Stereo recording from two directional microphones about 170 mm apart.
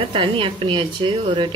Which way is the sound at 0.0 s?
30° right (ahead or behind).